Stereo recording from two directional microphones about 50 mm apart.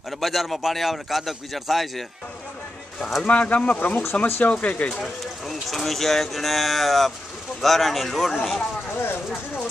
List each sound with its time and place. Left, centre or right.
0.2 s speech: centre
3.3 s speech: left
4.9 s speech: centre
8.9 s speech: left